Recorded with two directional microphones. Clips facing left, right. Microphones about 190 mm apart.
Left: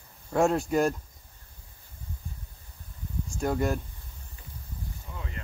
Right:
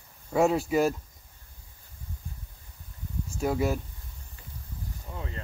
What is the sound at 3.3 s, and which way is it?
Speech, 5° right (ahead or behind).